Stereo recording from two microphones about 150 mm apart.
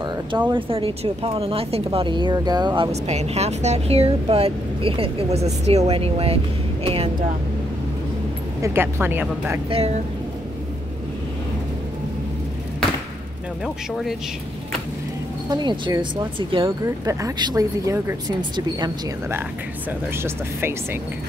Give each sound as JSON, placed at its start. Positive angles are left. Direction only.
{"t": 0.5, "sound": "speech", "side_deg": -35}
{"t": 3.1, "sound": "speech", "side_deg": -45}
{"t": 8.5, "sound": "speech", "side_deg": -20}
{"t": 15.5, "sound": "speech", "side_deg": -30}
{"t": 16.8, "sound": "speech", "side_deg": -20}
{"t": 20.2, "sound": "speech", "side_deg": -15}